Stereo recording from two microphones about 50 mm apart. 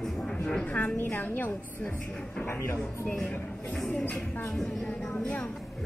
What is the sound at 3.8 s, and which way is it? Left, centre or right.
Speech, left.